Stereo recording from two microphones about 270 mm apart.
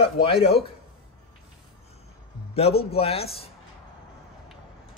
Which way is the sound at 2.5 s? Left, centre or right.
Left.